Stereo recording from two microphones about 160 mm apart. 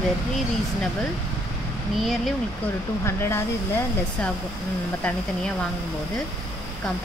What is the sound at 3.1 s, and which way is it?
Speech, 15° left (ahead or behind).